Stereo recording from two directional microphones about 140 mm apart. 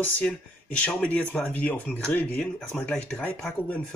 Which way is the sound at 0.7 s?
10° left (ahead or behind).